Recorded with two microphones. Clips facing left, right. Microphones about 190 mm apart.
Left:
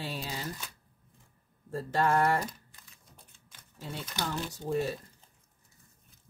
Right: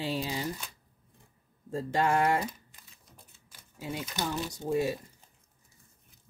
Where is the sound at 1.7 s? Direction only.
15° right (ahead or behind).